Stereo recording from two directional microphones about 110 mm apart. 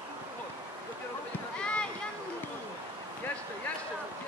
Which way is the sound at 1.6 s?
10° left (ahead or behind).